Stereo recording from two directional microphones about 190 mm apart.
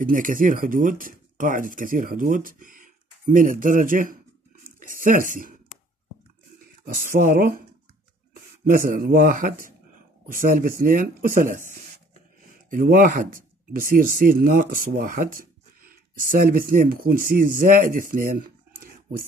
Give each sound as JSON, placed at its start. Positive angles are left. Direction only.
{"t": 0.0, "sound": "speech", "side_deg": -45}
{"t": 4.6, "sound": "a sound", "side_deg": -45}
{"t": 6.8, "sound": "speech", "side_deg": -45}
{"t": 8.6, "sound": "speech", "side_deg": -45}
{"t": 12.6, "sound": "speech", "side_deg": -45}